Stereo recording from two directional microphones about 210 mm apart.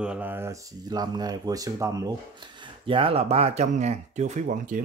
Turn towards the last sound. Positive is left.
turn(degrees=-40)  # may be behind; listen again after turning